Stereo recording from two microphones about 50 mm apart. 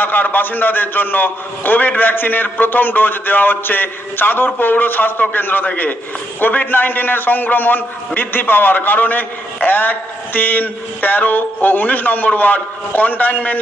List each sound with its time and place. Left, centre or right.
0.0 s a man's voice: left